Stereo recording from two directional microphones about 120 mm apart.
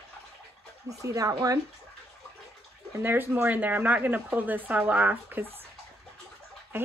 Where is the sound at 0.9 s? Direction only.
30° right (ahead or behind).